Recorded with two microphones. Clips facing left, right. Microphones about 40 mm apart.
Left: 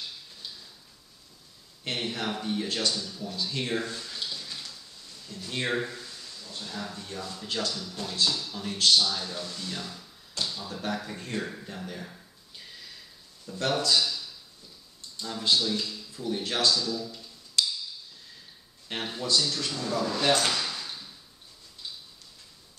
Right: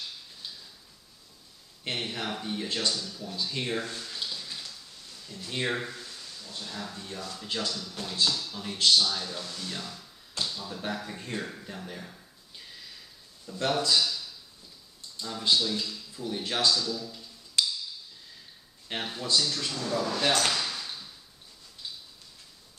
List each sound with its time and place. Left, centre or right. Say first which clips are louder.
2.0 s speech: left 2 dB; centre
3.3 s a sound: left 1 dB; centre
6.9 s a man's voice: left 1 dB; centre
10.4 s tap: even; right
10.7 s speech: left 2 dB; centre
17.6 s a sound: even; centre
18.9 s speech: left 1 dB; centre